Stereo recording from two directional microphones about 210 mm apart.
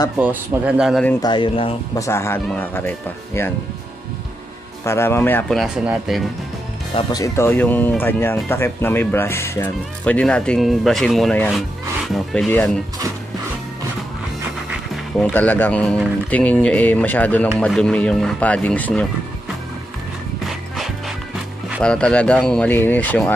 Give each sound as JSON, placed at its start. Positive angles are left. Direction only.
{"t": 0.2, "sound": "speech", "side_deg": -5}
{"t": 1.2, "sound": "speech", "side_deg": 25}
{"t": 2.0, "sound": "speech", "side_deg": 10}
{"t": 4.8, "sound": "speech", "side_deg": 10}
{"t": 7.0, "sound": "speech", "side_deg": 20}
{"t": 15.1, "sound": "speech", "side_deg": 5}
{"t": 20.4, "sound": "music", "side_deg": 0}
{"t": 21.8, "sound": "speech", "side_deg": 5}